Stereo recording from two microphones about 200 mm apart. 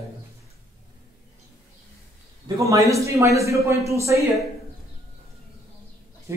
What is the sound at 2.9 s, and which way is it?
Speech, 15° right (ahead or behind).